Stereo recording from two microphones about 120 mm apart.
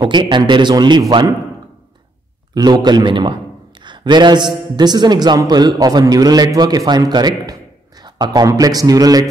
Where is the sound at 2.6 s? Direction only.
35° right (ahead or behind).